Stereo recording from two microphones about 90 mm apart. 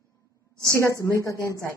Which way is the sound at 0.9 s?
35° left (ahead or behind).